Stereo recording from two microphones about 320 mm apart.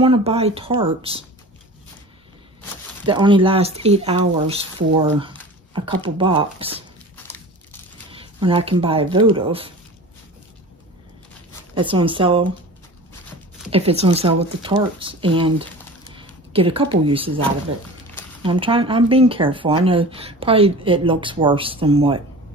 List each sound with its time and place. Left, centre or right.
0.0 s speech: centre
3.1 s speech: centre
5.7 s speech: centre
8.1 s speech: centre
11.7 s speech: centre
13.7 s speech: centre
18.4 s speech: centre